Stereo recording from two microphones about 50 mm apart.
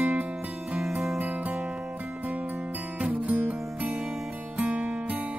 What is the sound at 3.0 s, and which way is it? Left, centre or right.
Music, right.